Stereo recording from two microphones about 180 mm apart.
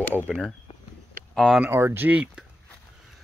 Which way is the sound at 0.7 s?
35° left (ahead or behind).